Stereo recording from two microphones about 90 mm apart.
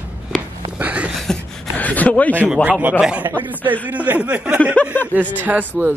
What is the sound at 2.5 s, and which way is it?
A man's voice, 15° right (ahead or behind).